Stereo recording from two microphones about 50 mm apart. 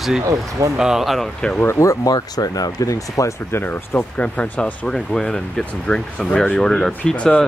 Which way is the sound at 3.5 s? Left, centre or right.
Left.